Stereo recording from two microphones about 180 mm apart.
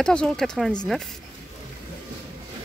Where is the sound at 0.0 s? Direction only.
5° left (ahead or behind).